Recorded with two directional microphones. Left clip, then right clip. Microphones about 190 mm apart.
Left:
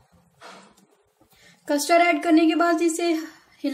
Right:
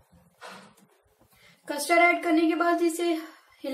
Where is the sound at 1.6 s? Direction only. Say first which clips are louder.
Left 3 dB; 55° left (ahead or behind).